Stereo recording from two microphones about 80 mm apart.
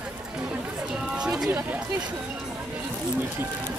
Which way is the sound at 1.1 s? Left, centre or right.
Centre.